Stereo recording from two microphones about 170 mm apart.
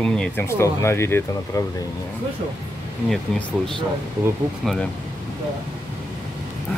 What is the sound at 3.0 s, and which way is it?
Speech, centre (ahead or behind).